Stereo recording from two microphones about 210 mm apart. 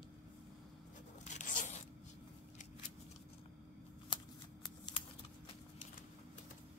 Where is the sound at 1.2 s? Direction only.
35° left (ahead or behind).